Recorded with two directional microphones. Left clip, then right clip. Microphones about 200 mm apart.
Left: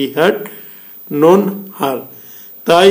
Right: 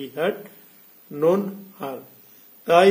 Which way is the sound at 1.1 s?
20° left (ahead or behind).